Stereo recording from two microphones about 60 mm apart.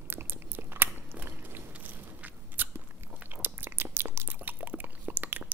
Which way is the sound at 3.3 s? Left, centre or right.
Right.